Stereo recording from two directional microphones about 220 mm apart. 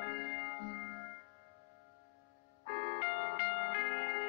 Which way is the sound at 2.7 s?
50° left (ahead or behind).